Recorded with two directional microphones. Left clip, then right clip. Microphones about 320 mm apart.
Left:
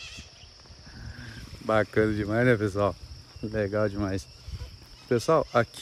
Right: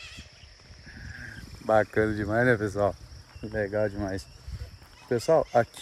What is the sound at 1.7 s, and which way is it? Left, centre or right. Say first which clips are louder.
Speech: right 1 dB; centre.